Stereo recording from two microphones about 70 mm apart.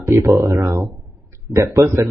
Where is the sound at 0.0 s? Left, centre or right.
Right.